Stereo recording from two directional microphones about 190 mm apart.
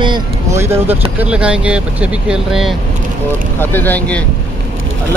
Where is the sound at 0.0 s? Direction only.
20° right (ahead or behind).